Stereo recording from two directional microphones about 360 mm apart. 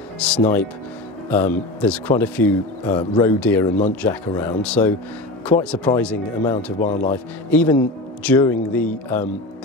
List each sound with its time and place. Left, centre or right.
0.2 s speech: centre
6.8 s speech: left
7.1 s speech: centre